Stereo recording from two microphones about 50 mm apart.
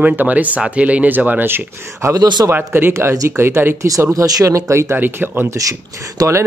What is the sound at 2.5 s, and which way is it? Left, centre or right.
Speech, right.